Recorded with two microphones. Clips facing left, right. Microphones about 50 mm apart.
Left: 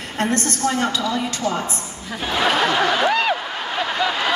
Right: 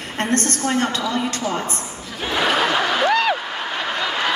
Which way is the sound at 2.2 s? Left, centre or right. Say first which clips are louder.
Even; centre.